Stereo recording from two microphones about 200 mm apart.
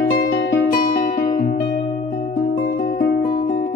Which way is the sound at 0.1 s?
50° left (ahead or behind).